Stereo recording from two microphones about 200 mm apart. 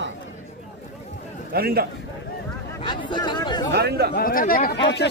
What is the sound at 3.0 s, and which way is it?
Speech, 20° left (ahead or behind).